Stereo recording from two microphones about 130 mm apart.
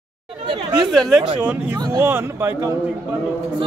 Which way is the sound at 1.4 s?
10° right (ahead or behind).